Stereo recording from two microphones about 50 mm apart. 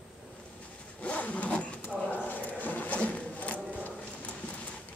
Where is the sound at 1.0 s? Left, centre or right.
Left.